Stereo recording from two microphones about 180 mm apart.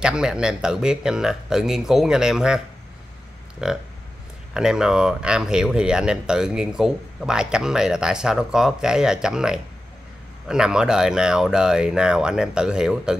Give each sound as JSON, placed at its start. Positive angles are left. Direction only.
{"t": 0.0, "sound": "speech", "side_deg": -5}
{"t": 3.6, "sound": "speech", "side_deg": -5}